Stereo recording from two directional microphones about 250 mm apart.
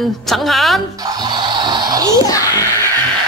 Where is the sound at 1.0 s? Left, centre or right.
Centre.